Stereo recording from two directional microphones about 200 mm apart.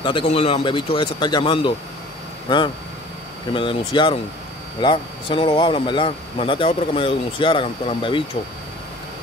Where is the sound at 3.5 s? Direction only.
25° left (ahead or behind).